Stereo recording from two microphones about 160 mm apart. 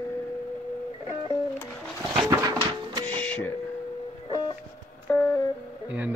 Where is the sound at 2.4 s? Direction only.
25° right (ahead or behind).